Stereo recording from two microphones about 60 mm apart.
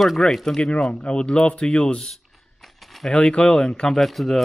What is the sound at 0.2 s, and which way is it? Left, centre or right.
Speech, centre.